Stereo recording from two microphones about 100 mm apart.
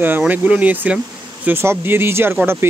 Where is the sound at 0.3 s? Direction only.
15° right (ahead or behind).